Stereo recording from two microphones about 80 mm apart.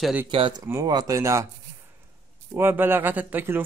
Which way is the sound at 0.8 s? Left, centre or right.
Right.